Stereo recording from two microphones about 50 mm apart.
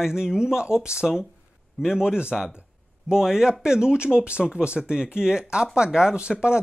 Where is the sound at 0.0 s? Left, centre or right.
Centre.